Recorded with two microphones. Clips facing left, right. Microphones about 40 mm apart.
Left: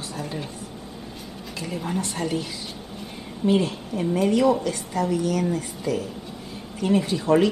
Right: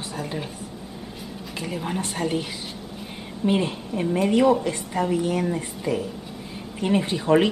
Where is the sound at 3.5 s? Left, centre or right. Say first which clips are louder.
Left 1 dB; right.